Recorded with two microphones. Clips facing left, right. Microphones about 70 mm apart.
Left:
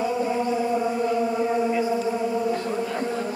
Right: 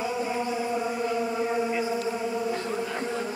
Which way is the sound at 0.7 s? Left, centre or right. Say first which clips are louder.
Left 4 dB; centre.